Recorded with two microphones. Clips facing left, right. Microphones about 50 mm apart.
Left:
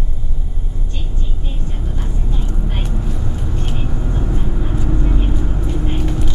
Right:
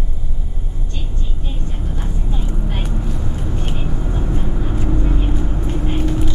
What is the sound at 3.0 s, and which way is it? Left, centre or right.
Vehicle, centre.